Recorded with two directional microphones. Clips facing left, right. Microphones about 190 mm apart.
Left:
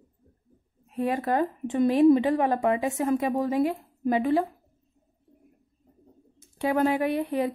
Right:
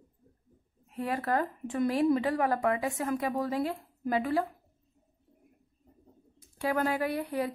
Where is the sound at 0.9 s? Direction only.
20° left (ahead or behind).